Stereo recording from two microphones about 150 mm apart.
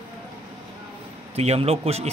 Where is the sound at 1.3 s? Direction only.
45° right (ahead or behind).